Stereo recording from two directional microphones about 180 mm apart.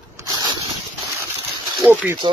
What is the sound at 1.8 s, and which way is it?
Speech, 10° right (ahead or behind).